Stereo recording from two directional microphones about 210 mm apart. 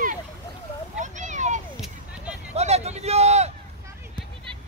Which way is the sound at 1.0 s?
35° right (ahead or behind).